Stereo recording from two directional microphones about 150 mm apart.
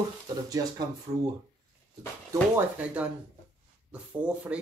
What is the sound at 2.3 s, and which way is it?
Speech, 10° right (ahead or behind).